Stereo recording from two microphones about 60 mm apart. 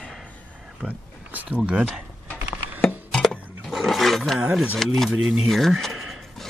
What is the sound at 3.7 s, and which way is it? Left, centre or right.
Roaring cats, centre.